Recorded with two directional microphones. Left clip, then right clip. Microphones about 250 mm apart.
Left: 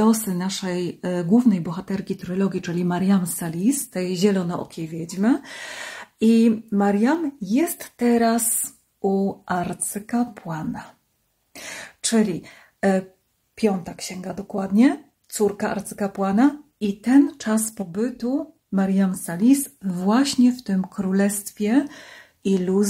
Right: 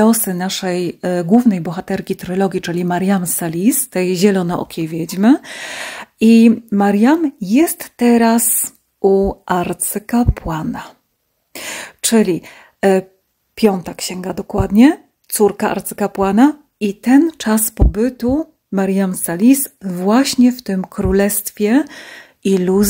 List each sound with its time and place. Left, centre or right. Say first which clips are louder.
0.0 s speech: right 7 dB; right